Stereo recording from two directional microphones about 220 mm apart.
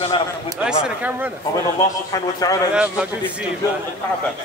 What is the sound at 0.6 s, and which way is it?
Speech, 5° right (ahead or behind).